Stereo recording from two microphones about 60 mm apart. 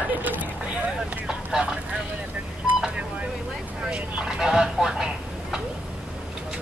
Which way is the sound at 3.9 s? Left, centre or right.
Centre.